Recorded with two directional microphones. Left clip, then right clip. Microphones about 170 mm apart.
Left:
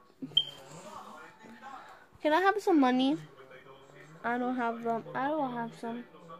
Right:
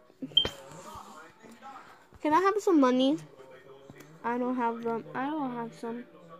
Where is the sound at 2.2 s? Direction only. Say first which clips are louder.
Right 1 dB; centre (ahead or behind).